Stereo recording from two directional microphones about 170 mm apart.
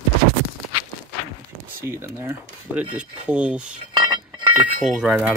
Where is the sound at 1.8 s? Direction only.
15° right (ahead or behind).